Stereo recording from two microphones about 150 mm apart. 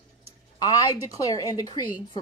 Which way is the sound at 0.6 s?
25° left (ahead or behind).